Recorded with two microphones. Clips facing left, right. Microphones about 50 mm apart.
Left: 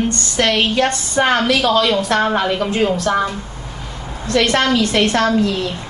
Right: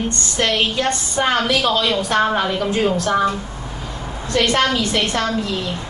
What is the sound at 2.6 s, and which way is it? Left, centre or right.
Speech, left.